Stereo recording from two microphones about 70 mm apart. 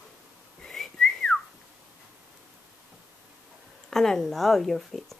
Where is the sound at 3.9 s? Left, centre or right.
Centre.